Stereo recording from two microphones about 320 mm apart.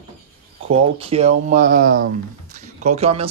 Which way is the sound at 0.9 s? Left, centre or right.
Centre.